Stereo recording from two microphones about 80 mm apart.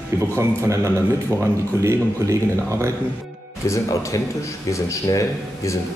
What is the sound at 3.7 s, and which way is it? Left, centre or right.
Speech, left.